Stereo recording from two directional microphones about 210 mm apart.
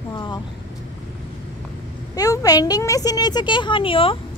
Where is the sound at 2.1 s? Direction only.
15° left (ahead or behind).